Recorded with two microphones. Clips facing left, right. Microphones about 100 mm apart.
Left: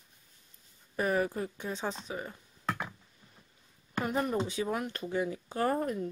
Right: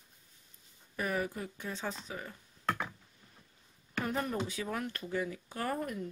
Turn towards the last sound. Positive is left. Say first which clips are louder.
# left 6 dB
turn(degrees=35)  # may be behind; listen again after turning